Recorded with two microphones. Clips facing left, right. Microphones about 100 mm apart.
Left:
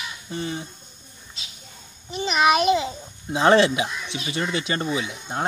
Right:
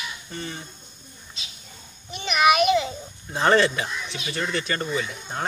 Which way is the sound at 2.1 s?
25° left (ahead or behind).